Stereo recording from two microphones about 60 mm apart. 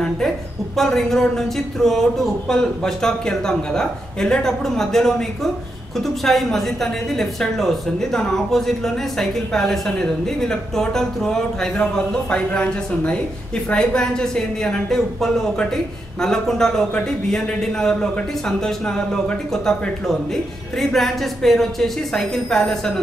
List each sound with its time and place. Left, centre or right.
0.7 s speech: centre